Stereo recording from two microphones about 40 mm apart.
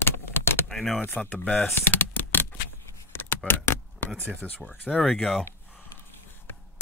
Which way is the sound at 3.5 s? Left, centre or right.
Left.